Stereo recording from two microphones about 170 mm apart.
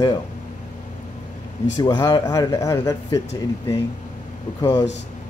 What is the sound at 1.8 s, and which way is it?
Speech, 25° left (ahead or behind).